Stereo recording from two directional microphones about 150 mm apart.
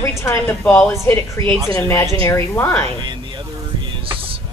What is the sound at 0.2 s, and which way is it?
A woman's voice, 15° left (ahead or behind).